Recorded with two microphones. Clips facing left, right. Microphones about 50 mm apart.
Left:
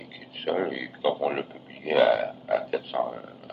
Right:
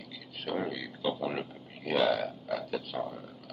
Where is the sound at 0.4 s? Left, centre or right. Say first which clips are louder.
Left 7 dB; left.